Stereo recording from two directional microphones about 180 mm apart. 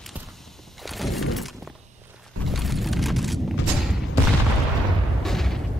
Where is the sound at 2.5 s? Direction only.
Centre (ahead or behind).